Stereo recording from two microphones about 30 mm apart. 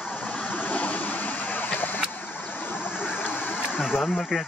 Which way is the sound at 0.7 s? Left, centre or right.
Left.